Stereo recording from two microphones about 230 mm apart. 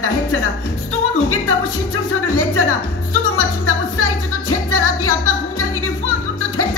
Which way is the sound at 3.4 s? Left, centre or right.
Left.